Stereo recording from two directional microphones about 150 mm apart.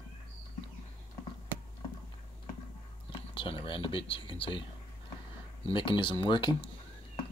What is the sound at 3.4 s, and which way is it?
Speech, 35° left (ahead or behind).